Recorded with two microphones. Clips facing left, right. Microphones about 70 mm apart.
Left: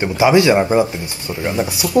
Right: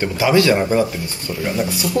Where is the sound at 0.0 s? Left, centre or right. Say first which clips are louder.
Left 3 dB; left.